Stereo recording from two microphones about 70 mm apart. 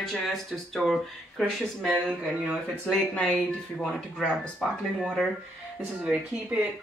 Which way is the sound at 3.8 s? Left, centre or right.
Centre.